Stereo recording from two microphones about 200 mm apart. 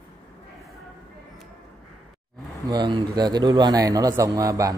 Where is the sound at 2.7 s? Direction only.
20° right (ahead or behind).